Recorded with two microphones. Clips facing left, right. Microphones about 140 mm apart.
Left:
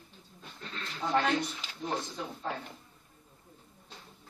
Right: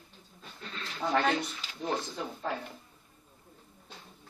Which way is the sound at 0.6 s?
5° right (ahead or behind).